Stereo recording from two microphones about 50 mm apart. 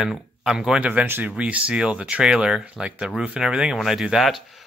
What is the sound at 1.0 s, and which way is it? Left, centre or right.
Speech, right.